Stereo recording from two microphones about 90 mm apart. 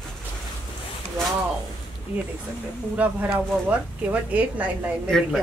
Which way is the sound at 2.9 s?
15° right (ahead or behind).